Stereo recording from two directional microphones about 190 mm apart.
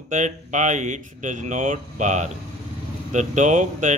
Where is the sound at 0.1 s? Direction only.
40° right (ahead or behind).